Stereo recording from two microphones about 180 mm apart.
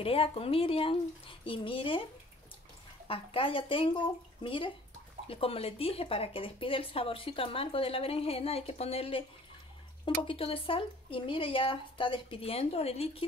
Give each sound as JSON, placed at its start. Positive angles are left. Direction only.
{"t": 0.0, "sound": "speech", "side_deg": 30}
{"t": 3.1, "sound": "speech", "side_deg": 30}